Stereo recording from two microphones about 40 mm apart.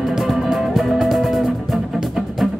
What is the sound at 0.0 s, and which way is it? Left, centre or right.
Music, centre.